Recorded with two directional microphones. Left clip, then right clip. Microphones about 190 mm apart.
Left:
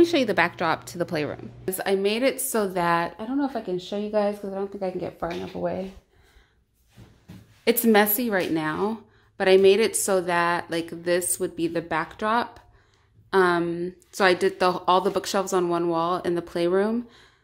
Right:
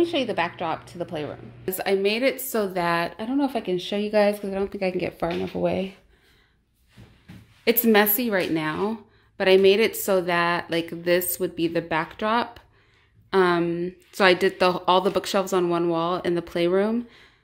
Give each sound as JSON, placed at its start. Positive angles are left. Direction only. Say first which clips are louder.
{"t": 0.0, "sound": "a woman's voice", "louder": "left 3 dB", "side_deg": 30}
{"t": 1.7, "sound": "a woman's voice", "louder": "right 1 dB", "side_deg": 5}
{"t": 3.2, "sound": "speech", "louder": "right 2 dB", "side_deg": -15}
{"t": 7.6, "sound": "a woman's voice", "louder": "even", "side_deg": 0}